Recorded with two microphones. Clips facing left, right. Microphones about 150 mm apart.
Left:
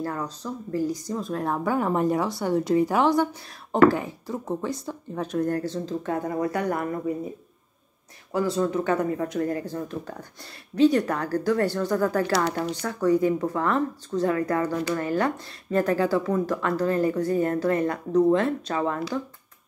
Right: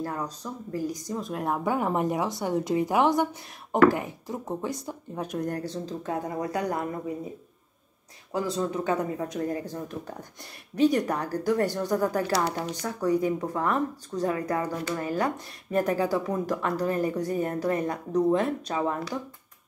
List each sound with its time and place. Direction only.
0.0 s speech: 15° right (ahead or behind)
8.3 s speech: 15° right (ahead or behind)